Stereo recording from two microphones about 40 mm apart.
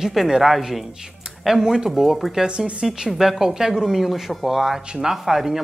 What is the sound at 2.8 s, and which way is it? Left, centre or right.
Speech, centre.